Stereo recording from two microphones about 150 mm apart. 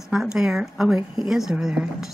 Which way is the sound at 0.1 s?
5° right (ahead or behind).